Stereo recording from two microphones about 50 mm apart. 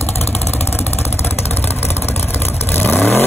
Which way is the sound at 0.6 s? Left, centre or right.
Left.